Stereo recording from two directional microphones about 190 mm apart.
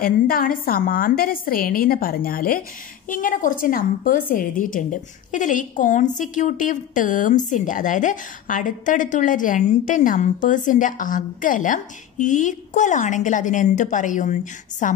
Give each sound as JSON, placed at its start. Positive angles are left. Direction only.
{"t": 0.0, "sound": "a woman's voice", "side_deg": 50}